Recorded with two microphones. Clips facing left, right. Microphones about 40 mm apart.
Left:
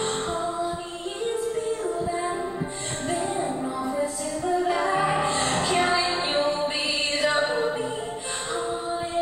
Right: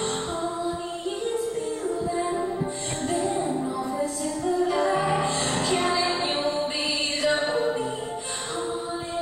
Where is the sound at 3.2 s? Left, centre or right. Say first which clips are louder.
Right 2 dB; left.